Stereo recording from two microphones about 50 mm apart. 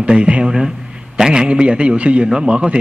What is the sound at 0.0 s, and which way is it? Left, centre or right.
A man's voice, right.